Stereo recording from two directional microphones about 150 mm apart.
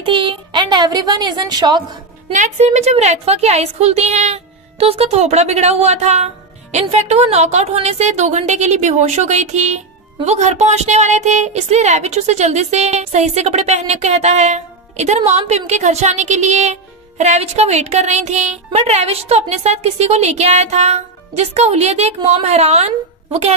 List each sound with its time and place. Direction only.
0.0 s speech: 35° right (ahead or behind)
2.3 s a woman's voice: 50° right (ahead or behind)